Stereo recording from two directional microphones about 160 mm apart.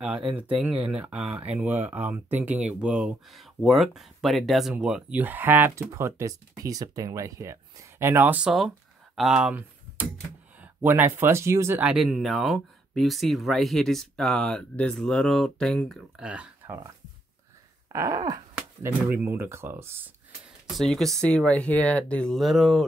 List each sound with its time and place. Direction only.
0.4 s speech: 10° right (ahead or behind)
20.7 s speech: centre (ahead or behind)